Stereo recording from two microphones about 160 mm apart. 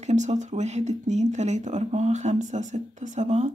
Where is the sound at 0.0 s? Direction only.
45° right (ahead or behind).